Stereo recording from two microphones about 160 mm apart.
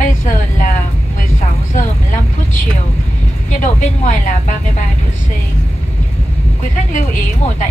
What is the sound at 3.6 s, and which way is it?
Speech, 50° left (ahead or behind).